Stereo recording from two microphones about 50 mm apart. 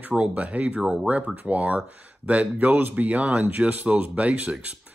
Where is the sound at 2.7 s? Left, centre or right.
Right.